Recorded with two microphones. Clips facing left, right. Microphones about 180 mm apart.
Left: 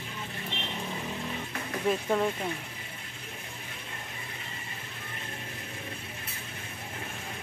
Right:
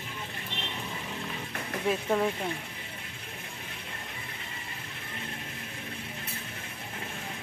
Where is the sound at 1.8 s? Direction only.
Centre (ahead or behind).